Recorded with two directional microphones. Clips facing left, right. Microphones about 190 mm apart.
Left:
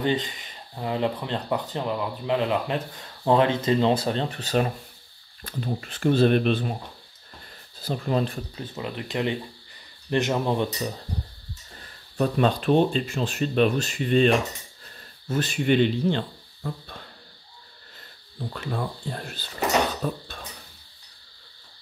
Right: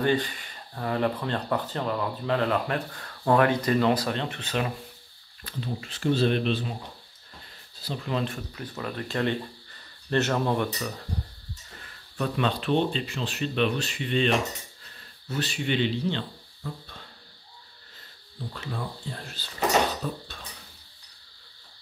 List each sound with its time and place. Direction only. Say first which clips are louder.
0.0 s speech: even; 20° left (ahead or behind); by 4.7 s 40° left (ahead or behind)
5.4 s speech: left 3 dB; 50° left (ahead or behind)
7.8 s speech: left 4 dB; 45° left (ahead or behind)
8.5 s speech: even; 20° left (ahead or behind)
11.8 s speech: left 6 dB; 40° left (ahead or behind)
18.5 s speech: left 5 dB; 55° left (ahead or behind)